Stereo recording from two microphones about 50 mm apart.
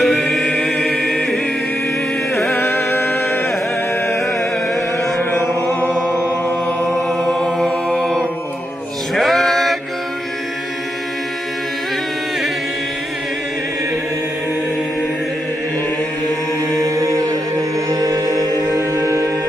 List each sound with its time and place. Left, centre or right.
0.0 s music: centre
2.5 s music: left
5.7 s chant: left
6.9 s chant: centre
9.1 s male singing: centre
16.8 s mantra: right
18.8 s music: right